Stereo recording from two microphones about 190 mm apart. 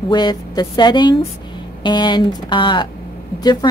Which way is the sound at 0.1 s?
20° left (ahead or behind).